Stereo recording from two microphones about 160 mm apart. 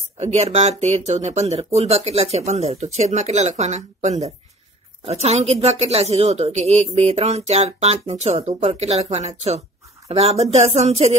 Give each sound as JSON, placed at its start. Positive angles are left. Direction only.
{"t": 0.2, "sound": "speech", "side_deg": -40}